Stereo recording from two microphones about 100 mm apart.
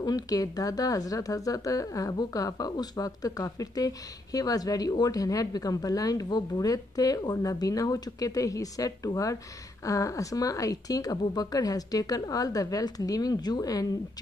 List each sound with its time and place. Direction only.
0.0 s speech: 40° left (ahead or behind)